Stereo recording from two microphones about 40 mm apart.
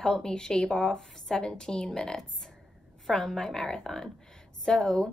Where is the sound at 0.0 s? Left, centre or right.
Centre.